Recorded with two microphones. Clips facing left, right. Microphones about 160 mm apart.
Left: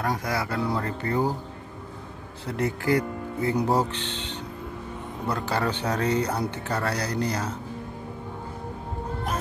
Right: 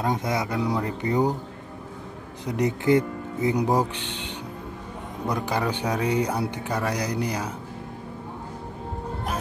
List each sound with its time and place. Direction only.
0.0 s speech: 20° right (ahead or behind)
2.4 s speech: 20° right (ahead or behind)